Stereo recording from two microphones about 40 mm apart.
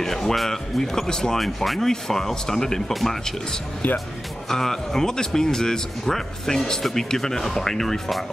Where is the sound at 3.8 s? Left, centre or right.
Left.